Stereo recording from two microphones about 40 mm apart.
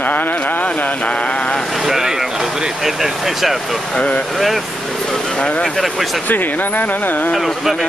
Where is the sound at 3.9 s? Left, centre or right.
Left.